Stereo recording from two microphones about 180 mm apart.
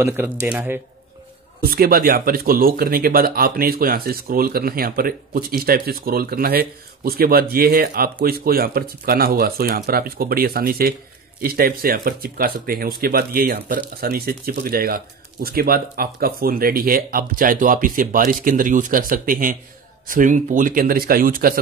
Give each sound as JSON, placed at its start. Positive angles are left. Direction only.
{"t": 0.0, "sound": "speech", "side_deg": -15}
{"t": 1.6, "sound": "speech", "side_deg": -55}